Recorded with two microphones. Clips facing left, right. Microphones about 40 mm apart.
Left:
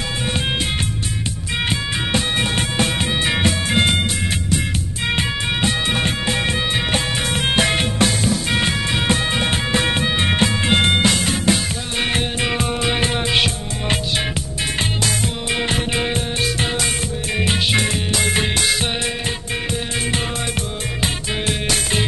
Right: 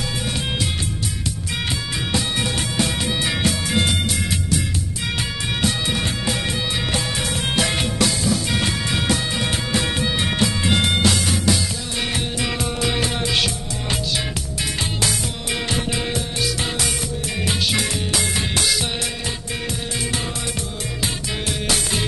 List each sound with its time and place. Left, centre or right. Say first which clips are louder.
1.7 s music: left 3 dB; left
15.7 s music: left 3 dB; left
21.0 s music: left 3 dB; left